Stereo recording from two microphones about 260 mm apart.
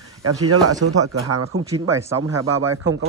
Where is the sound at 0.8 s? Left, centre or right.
Right.